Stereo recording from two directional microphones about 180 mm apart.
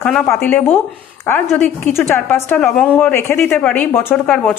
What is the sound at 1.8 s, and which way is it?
A woman's voice, 15° left (ahead or behind).